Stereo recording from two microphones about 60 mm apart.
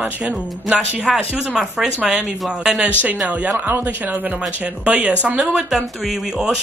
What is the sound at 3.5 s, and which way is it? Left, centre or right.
Speech, right.